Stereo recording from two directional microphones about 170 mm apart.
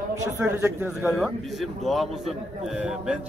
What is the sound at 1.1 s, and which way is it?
A man's voice, centre (ahead or behind).